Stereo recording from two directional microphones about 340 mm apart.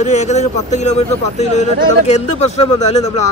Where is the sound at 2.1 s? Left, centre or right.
Centre.